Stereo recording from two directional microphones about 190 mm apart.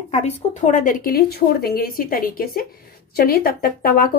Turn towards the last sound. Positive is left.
turn(degrees=50)  # may be behind; listen again after turning